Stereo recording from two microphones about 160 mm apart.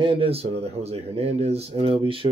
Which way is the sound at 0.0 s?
35° right (ahead or behind).